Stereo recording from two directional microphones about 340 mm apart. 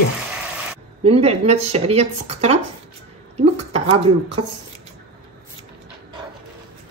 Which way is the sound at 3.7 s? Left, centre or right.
Centre.